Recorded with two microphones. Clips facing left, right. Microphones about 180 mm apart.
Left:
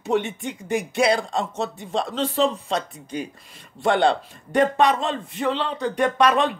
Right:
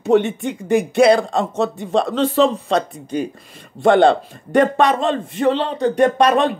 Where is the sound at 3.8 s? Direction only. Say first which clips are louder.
Right 7 dB; 50° right (ahead or behind).